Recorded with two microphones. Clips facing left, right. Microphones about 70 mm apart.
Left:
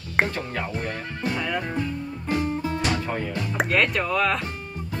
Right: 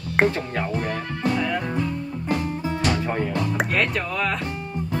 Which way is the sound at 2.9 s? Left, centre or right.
Centre.